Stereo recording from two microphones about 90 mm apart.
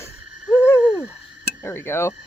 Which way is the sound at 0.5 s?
25° left (ahead or behind).